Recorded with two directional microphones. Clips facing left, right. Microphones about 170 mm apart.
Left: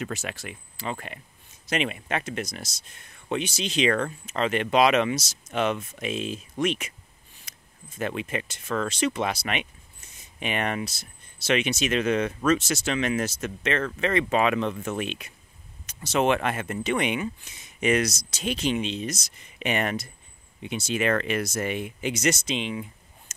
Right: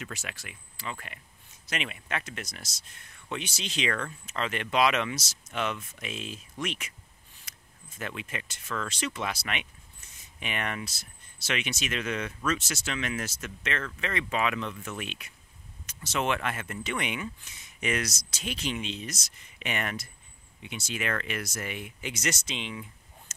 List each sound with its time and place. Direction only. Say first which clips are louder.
0.0 s speech: left 8 dB; 30° left (ahead or behind)
3.9 s speech: left 7 dB; 30° left (ahead or behind)
8.2 s speech: left 8 dB; 25° left (ahead or behind)